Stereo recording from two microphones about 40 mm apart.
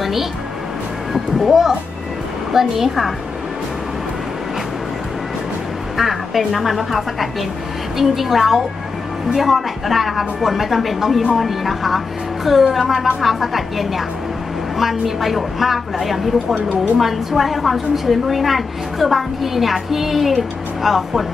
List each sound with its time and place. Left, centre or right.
0.0 s music: centre
1.1 s a woman's voice: centre
5.9 s a woman's voice: centre